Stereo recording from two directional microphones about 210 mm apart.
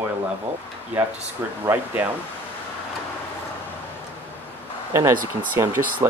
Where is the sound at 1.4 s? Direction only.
10° right (ahead or behind).